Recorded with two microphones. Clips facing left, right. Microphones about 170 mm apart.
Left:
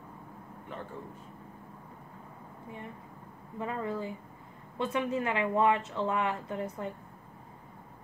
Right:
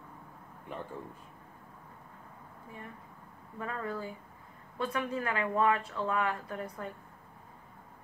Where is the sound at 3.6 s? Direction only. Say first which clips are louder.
Left 3 dB; 20° left (ahead or behind).